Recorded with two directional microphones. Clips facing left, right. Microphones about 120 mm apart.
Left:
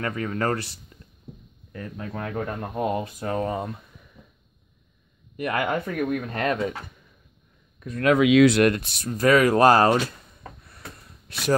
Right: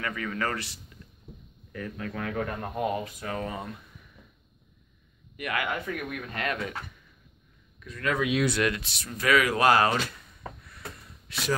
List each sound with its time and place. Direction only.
0.0 s speech: 40° left (ahead or behind)
1.7 s speech: 25° left (ahead or behind)
5.3 s speech: 35° left (ahead or behind)
7.8 s speech: 55° left (ahead or behind)
8.1 s speech: 90° left
8.6 s speech: 50° left (ahead or behind)
11.2 s speech: 50° left (ahead or behind)